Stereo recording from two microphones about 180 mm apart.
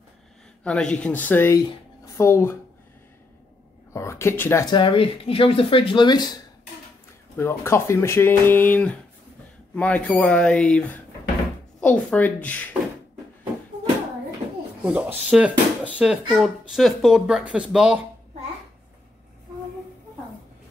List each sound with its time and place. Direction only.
0.7 s speech: 5° left (ahead or behind)
3.9 s speech: 15° left (ahead or behind)
11.8 s speech: 10° left (ahead or behind)
14.8 s a child's voice: 5° right (ahead or behind)